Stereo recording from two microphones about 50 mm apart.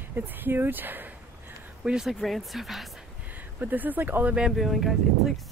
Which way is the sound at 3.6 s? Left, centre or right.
Right.